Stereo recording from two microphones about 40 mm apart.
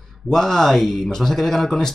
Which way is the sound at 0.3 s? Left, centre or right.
Centre.